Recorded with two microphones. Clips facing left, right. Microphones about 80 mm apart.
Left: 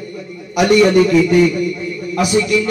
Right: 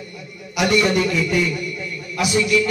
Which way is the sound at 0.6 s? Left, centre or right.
Left.